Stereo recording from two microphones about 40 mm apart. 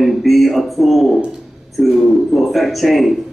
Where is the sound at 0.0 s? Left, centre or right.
Centre.